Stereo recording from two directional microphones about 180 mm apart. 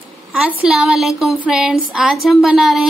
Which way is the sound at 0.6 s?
5° right (ahead or behind).